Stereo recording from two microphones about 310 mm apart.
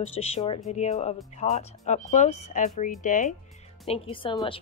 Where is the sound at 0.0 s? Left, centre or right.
Centre.